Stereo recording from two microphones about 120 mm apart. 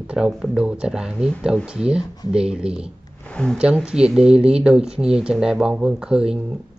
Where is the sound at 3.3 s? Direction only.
5° left (ahead or behind).